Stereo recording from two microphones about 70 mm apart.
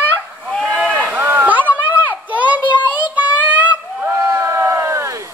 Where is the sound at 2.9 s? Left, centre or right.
Right.